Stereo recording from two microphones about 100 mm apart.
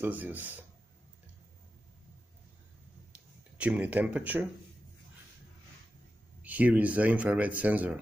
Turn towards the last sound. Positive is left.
turn(degrees=-15)  # may be behind; listen again after turning